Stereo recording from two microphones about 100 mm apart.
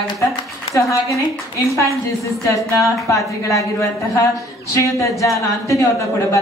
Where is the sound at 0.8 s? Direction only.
30° left (ahead or behind).